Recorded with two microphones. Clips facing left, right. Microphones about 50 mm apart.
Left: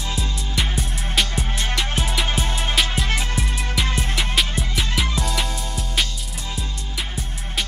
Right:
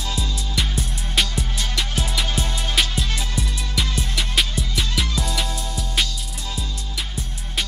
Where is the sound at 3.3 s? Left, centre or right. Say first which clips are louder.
Left 2 dB; left.